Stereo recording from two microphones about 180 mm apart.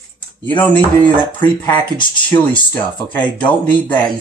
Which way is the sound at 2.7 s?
10° left (ahead or behind).